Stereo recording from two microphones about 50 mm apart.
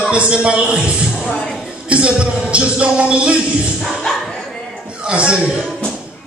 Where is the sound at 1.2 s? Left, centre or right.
Left.